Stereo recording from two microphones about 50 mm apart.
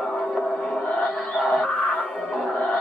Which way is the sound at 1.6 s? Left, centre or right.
Left.